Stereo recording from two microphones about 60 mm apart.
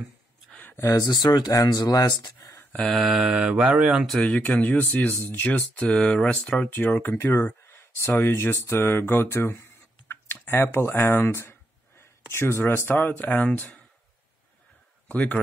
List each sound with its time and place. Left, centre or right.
0.7 s speech: left
2.9 s mantra: centre
3.2 s speech: centre
4.4 s speech: left
5.6 s speech: centre
6.7 s speech: left
15.0 s speech: left